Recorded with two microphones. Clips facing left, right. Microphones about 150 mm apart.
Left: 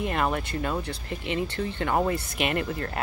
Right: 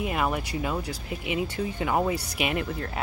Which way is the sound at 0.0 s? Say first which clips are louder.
Left 1 dB; 5° right (ahead or behind).